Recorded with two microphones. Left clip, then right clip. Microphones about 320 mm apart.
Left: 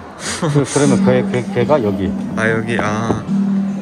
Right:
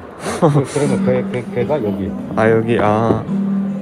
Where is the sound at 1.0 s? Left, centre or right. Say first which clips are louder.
Left 3 dB; left.